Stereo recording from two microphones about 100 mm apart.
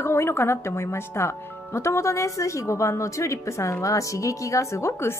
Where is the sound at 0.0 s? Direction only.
25° left (ahead or behind).